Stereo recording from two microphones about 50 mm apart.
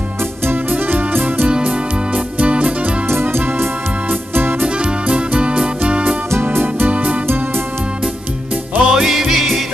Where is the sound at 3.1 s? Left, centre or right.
Right.